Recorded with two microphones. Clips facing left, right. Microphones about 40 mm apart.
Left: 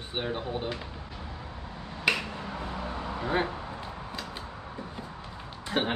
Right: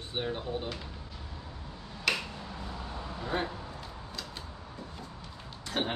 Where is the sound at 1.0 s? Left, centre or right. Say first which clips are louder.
Left 5 dB; left.